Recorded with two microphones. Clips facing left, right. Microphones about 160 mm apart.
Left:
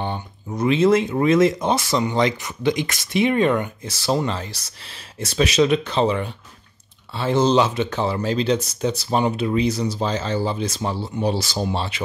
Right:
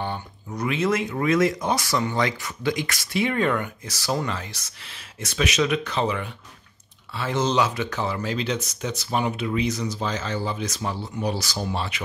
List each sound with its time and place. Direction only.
0.0 s speech: 25° left (ahead or behind)